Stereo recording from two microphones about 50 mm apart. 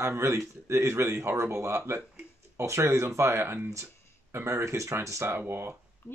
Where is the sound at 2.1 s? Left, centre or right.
Right.